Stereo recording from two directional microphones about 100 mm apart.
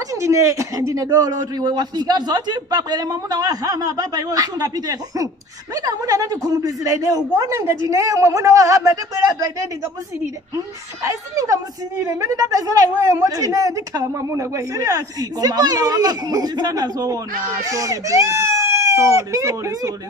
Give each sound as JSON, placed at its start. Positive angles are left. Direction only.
{"t": 0.1, "sound": "a man's voice", "side_deg": -30}
{"t": 10.5, "sound": "a man's voice", "side_deg": -30}